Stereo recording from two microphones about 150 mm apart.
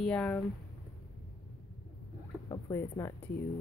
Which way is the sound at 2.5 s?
20° left (ahead or behind).